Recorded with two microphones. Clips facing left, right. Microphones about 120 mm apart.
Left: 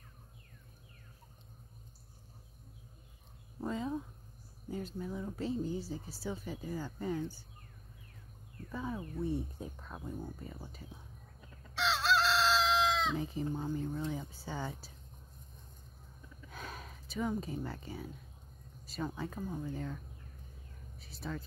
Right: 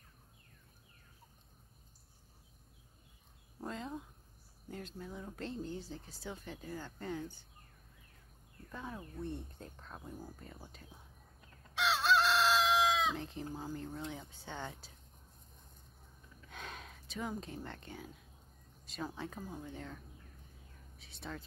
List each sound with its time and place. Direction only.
3.6 s speech: 5° left (ahead or behind)
8.6 s speech: centre (ahead or behind)
11.7 s chicken: 10° right (ahead or behind)
13.2 s speech: centre (ahead or behind)
16.4 s a sound: 5° left (ahead or behind)
18.9 s speech: centre (ahead or behind)
21.0 s speech: centre (ahead or behind)